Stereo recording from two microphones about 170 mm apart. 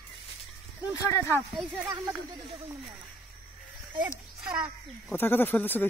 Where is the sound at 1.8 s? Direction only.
20° right (ahead or behind).